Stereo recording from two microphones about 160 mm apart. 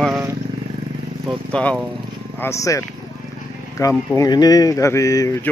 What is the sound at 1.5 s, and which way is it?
Speech, 10° left (ahead or behind).